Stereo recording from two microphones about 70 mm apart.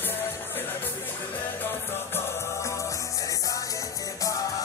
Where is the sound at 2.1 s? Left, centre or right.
Left.